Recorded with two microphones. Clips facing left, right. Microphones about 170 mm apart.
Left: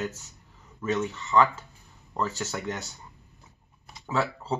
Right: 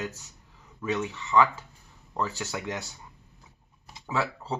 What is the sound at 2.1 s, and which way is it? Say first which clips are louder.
Speech: left 1 dB; 15° right (ahead or behind).